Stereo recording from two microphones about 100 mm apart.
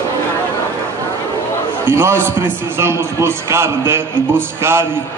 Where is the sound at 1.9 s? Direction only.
25° right (ahead or behind).